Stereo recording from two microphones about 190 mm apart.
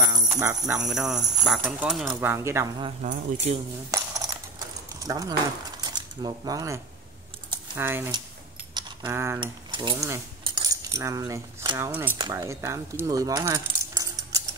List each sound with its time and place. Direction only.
0.4 s speech: 10° right (ahead or behind)
2.1 s speech: 15° right (ahead or behind)
2.8 s speech: 35° right (ahead or behind)
3.9 s a sound: 20° right (ahead or behind)
7.7 s speech: 10° right (ahead or behind)
9.4 s mechanisms: 25° right (ahead or behind)
10.4 s keys jangling: 20° right (ahead or behind)
11.9 s speech: 10° right (ahead or behind)
12.2 s speech: 20° right (ahead or behind)